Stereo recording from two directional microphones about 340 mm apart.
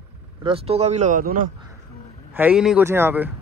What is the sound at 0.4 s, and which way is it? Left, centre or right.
Speech, centre.